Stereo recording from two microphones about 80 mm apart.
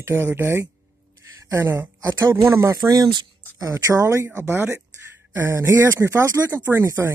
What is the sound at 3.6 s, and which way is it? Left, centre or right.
Speech, right.